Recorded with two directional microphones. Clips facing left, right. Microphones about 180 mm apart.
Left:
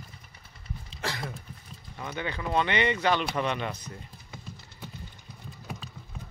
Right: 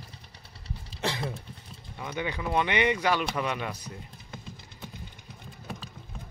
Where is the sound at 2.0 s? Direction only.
10° right (ahead or behind).